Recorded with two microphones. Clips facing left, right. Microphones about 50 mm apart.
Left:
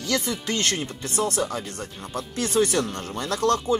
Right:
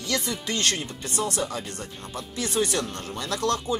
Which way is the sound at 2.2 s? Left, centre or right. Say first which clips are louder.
Left 4 dB; left.